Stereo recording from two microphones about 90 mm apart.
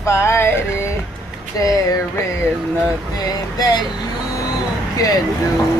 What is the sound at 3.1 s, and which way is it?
Speech, 45° left (ahead or behind).